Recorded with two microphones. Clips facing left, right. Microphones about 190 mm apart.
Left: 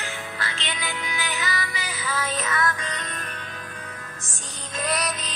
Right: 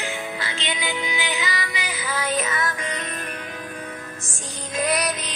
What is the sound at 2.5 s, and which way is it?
Music, 20° right (ahead or behind).